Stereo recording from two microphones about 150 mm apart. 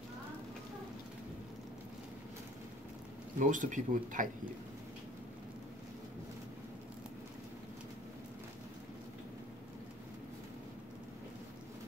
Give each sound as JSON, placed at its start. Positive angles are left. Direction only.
{"t": 3.3, "sound": "speech", "side_deg": -60}